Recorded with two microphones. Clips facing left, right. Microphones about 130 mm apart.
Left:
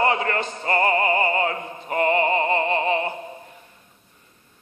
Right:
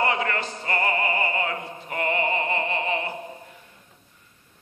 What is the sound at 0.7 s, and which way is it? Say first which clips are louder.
Opera: left 6 dB; 35° left (ahead or behind).